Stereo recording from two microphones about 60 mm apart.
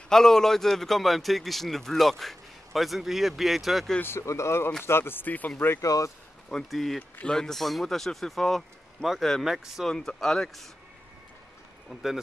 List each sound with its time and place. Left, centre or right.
0.1 s a man's voice: centre
4.0 s speech: left
5.8 s speech: left
6.5 s a man's voice: centre
9.8 s speech: centre
11.9 s a man's voice: centre